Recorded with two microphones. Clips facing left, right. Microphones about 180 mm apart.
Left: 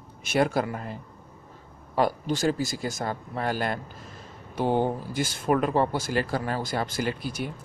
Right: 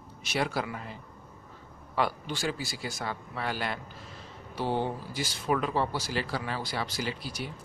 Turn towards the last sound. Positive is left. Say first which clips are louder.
# left 6 dB
turn(degrees=50)  # may be behind; listen again after turning